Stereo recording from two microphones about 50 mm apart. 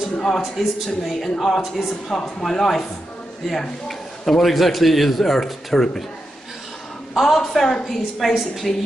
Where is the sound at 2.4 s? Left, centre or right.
Centre.